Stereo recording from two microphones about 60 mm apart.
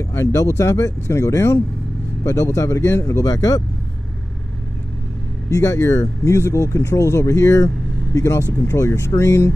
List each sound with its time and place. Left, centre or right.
0.1 s a sound: left
0.4 s speech: left
3.3 s speech: left
5.5 s speech: left